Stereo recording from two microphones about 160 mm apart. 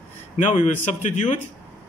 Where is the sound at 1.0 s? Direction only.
50° left (ahead or behind).